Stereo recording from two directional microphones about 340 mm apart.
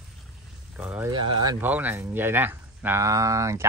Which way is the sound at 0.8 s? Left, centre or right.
Centre.